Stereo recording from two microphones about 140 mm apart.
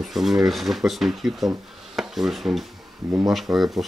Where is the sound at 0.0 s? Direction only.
Centre (ahead or behind).